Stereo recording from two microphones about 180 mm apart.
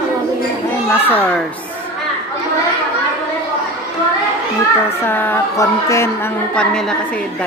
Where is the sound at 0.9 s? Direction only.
10° left (ahead or behind).